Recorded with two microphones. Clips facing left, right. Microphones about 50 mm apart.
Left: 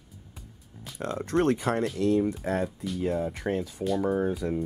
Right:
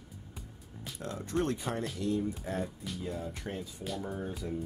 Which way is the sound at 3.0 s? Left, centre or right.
Left.